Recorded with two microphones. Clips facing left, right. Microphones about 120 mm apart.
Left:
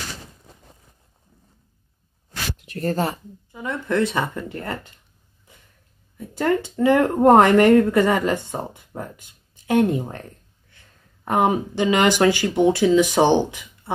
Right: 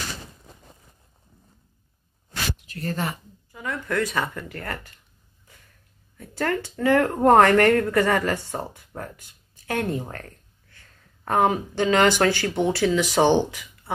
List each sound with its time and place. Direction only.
2.6 s speech: 50° left (ahead or behind)
3.5 s speech: 25° left (ahead or behind)
5.5 s a sound: 20° left (ahead or behind)
6.1 s speech: 20° left (ahead or behind)